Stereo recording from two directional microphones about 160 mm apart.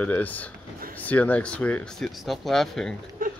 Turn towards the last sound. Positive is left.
turn(degrees=-60)  # may be behind; listen again after turning